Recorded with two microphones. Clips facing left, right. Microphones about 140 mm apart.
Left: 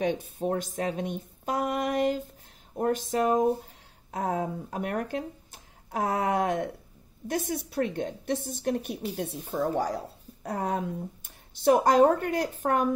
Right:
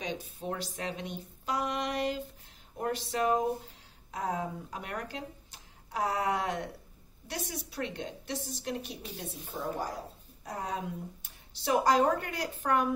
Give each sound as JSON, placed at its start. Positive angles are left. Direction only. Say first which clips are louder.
{"t": 0.0, "sound": "speech", "louder": "left 9 dB", "side_deg": 55}
{"t": 10.4, "sound": "speech", "louder": "left 6 dB", "side_deg": 55}